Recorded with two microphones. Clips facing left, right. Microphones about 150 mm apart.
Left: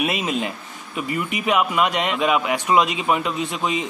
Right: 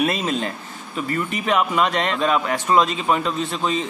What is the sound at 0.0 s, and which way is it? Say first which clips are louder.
A man's voice: right 1 dB; 5° left (ahead or behind).